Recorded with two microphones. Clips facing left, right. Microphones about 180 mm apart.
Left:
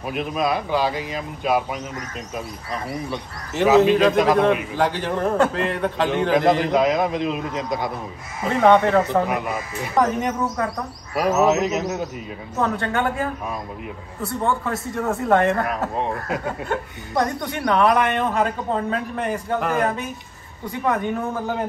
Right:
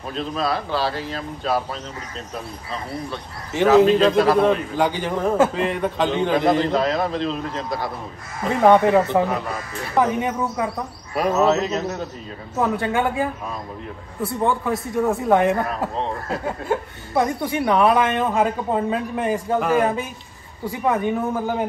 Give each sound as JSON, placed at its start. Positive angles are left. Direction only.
{"t": 0.1, "sound": "speech", "side_deg": 15}
{"t": 3.5, "sound": "a man's voice", "side_deg": 5}
{"t": 6.7, "sound": "speech", "side_deg": 15}
{"t": 8.5, "sound": "a man's voice", "side_deg": -5}
{"t": 11.1, "sound": "a man's voice", "side_deg": 0}
{"t": 11.4, "sound": "speech", "side_deg": 15}
{"t": 12.5, "sound": "speech", "side_deg": -5}
{"t": 14.2, "sound": "a man's voice", "side_deg": 0}
{"t": 16.6, "sound": "a man's voice", "side_deg": -5}